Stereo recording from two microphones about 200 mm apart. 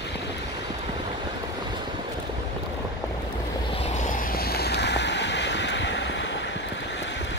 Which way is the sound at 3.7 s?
35° left (ahead or behind).